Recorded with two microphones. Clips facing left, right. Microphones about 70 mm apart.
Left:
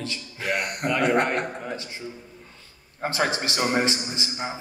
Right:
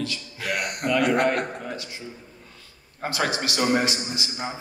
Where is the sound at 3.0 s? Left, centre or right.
Left.